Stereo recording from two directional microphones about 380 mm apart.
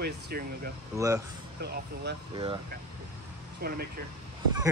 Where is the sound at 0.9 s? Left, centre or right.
Centre.